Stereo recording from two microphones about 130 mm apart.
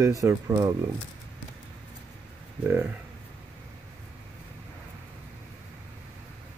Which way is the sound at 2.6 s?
15° right (ahead or behind).